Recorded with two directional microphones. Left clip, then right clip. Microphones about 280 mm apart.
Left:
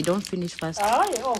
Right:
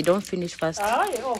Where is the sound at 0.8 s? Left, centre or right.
Left.